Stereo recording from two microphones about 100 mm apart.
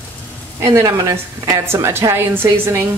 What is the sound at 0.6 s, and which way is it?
A woman's voice, 30° right (ahead or behind).